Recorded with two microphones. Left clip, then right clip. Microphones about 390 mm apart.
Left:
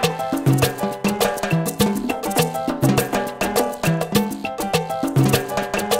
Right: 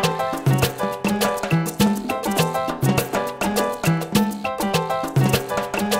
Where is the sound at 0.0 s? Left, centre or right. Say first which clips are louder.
Left 1 dB; left.